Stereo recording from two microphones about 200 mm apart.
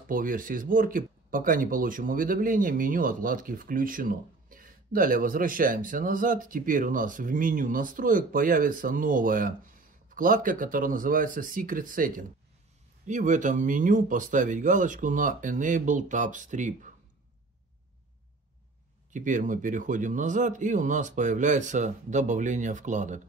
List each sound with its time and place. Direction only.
0.1 s speech: 45° right (ahead or behind)
19.1 s speech: 40° right (ahead or behind)